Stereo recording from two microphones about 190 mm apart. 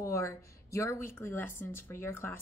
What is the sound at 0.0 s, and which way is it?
Speech, 15° left (ahead or behind).